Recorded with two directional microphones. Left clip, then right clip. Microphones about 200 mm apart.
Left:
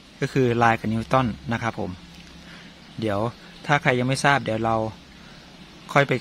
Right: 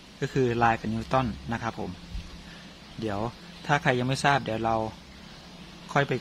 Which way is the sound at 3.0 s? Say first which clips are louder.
Left 6 dB; 35° left (ahead or behind).